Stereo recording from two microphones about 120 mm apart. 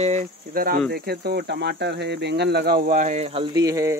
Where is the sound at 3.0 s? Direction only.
75° right (ahead or behind).